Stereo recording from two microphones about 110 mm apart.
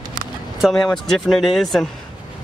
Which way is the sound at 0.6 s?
Centre (ahead or behind).